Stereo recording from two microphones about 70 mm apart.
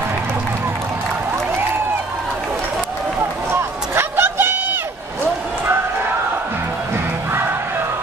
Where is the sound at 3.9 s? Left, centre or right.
Right.